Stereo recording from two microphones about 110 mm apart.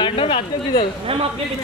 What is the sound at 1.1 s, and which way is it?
Speech, 60° right (ahead or behind).